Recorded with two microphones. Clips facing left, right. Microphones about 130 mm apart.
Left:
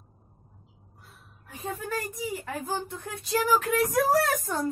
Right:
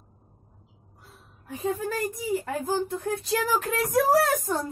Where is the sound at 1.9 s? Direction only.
40° right (ahead or behind).